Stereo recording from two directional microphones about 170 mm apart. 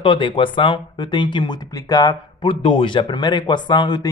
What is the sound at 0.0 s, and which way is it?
Speech, 30° left (ahead or behind).